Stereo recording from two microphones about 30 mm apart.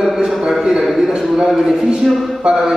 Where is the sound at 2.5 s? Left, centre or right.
Right.